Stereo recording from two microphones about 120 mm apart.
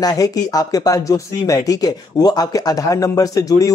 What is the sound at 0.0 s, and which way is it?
Speech, 30° left (ahead or behind).